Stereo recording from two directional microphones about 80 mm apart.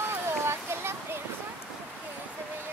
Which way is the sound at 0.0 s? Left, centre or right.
Right.